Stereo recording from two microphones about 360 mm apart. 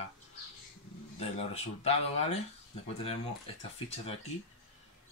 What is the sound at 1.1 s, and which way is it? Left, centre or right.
Speech, centre.